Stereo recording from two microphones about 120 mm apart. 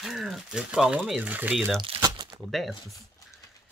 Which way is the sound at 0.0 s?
Centre (ahead or behind).